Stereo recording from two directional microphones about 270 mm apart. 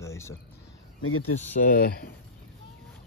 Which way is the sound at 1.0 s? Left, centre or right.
Left.